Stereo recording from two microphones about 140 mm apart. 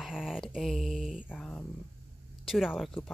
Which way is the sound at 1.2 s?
10° left (ahead or behind).